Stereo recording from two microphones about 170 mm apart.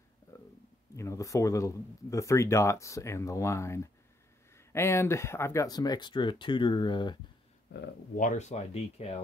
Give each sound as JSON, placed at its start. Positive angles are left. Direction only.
{"t": 0.3, "sound": "a sound", "side_deg": 15}
{"t": 0.9, "sound": "speech", "side_deg": 15}
{"t": 8.2, "sound": "speech", "side_deg": 45}